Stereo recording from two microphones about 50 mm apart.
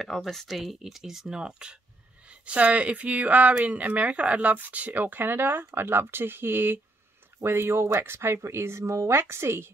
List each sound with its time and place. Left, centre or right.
0.0 s speech: centre
0.5 s speech: centre
1.4 s speech: centre; by 9.2 s right
9.2 s speech: right